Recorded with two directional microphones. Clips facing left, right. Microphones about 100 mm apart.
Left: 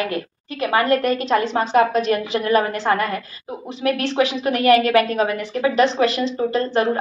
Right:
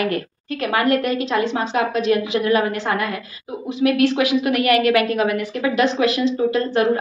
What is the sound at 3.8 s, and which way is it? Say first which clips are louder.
A woman's voice: right 3 dB; 30° left (ahead or behind).